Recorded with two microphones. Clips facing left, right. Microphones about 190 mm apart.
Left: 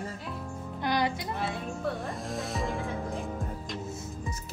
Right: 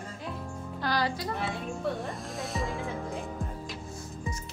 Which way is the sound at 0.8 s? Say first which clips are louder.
Left 1 dB; 20° left (ahead or behind).